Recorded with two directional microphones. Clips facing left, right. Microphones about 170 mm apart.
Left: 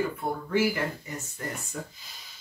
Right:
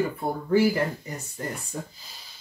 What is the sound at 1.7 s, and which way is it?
Speech, 30° right (ahead or behind).